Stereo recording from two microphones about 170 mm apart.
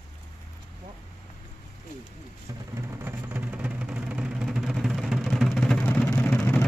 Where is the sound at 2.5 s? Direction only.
20° right (ahead or behind).